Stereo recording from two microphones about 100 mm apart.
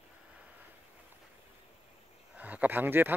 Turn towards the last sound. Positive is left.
turn(degrees=-20)  # may be behind; listen again after turning